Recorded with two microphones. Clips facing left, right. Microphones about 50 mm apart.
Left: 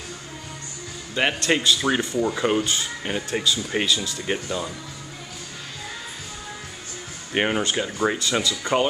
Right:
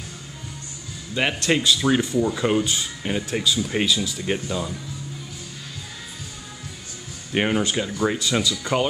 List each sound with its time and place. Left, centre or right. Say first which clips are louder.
1.1 s speech: even; centre
3.0 s speech: right 1 dB; centre
7.3 s speech: right 1 dB; centre